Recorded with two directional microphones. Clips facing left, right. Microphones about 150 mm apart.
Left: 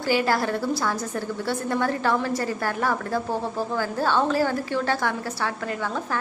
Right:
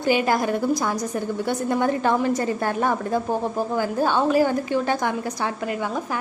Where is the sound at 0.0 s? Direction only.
20° right (ahead or behind).